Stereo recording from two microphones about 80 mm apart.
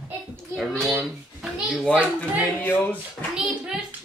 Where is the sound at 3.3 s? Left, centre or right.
Centre.